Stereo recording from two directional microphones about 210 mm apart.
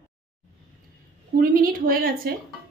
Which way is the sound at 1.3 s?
45° right (ahead or behind).